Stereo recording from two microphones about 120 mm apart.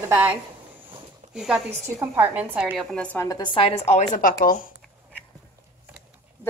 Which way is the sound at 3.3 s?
45° left (ahead or behind).